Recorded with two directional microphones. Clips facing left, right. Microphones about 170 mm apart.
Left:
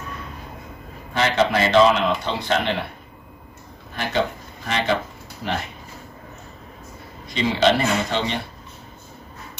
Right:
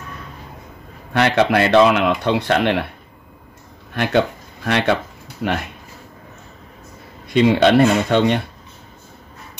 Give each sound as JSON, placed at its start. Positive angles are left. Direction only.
{"t": 1.1, "sound": "speech", "side_deg": -65}
{"t": 3.9, "sound": "speech", "side_deg": -65}
{"t": 7.2, "sound": "speech", "side_deg": -60}